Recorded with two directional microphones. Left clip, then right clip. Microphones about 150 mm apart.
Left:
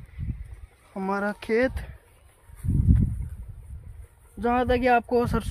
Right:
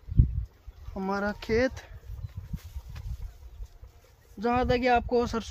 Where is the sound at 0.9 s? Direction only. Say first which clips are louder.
Left 3 dB; 50° left (ahead or behind).